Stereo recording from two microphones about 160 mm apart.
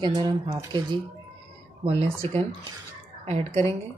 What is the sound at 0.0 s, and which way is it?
Speech, 25° right (ahead or behind).